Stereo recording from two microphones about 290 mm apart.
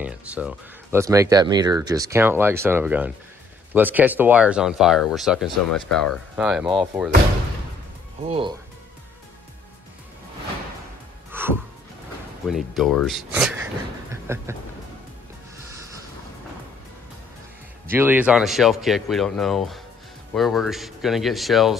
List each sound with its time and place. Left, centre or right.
0.0 s speech: centre
8.2 s speech: centre
11.3 s music: centre
12.4 s speech: centre
14.1 s a sound: centre
17.8 s speech: centre